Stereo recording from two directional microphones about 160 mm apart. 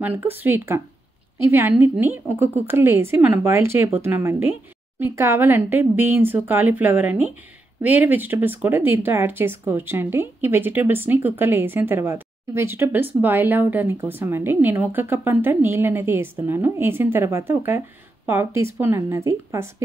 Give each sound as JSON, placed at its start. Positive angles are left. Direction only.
{"t": 0.0, "sound": "speech", "side_deg": -10}